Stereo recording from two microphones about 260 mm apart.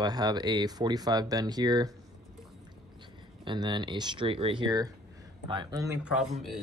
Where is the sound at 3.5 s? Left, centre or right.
Centre.